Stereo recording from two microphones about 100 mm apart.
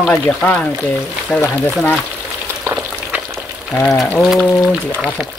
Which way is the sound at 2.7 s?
10° right (ahead or behind).